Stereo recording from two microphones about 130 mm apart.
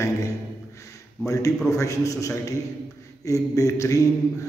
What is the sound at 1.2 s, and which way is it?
A man's voice, 25° left (ahead or behind).